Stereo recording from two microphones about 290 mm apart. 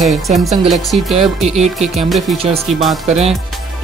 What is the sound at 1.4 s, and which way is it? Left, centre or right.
Speech, right.